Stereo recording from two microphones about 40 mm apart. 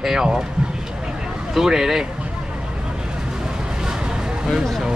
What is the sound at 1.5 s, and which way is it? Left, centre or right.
Speech, centre.